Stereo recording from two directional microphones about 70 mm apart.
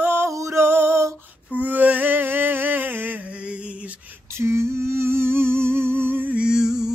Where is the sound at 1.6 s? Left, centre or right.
Right.